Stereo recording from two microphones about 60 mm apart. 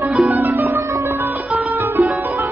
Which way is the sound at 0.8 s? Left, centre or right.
Right.